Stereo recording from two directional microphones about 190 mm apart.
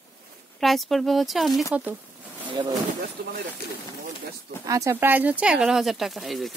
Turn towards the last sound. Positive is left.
turn(degrees=0)  # may be behind; listen again after turning